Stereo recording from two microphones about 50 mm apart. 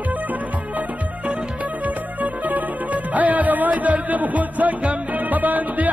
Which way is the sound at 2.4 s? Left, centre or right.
Right.